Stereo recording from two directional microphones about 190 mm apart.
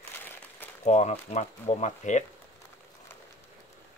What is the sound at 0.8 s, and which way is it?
Speech, 40° left (ahead or behind).